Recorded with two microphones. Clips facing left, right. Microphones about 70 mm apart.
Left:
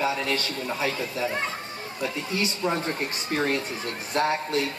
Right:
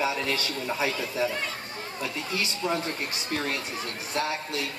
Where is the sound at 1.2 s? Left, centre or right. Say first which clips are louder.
Left 2 dB; left.